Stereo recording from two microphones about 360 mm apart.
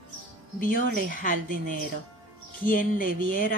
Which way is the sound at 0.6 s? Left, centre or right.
Left.